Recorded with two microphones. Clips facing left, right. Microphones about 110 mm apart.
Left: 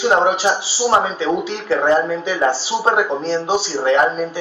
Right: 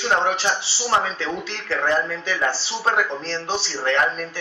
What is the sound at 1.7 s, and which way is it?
Speech, 25° left (ahead or behind).